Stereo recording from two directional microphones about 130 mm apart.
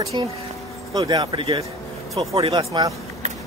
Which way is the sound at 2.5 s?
30° right (ahead or behind).